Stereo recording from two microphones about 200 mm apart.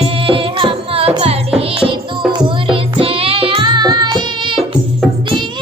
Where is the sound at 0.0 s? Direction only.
25° right (ahead or behind).